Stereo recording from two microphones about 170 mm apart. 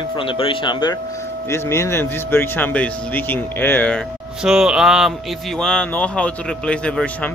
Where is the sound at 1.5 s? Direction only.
15° left (ahead or behind).